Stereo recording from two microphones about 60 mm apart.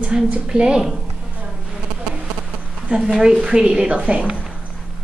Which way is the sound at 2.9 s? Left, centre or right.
Centre.